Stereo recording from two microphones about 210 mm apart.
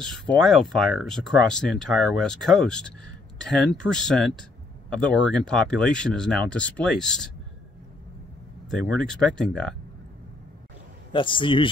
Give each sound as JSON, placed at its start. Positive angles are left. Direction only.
{"t": 0.0, "sound": "speech", "side_deg": 0}
{"t": 8.6, "sound": "speech", "side_deg": 5}
{"t": 11.1, "sound": "a man's voice", "side_deg": 25}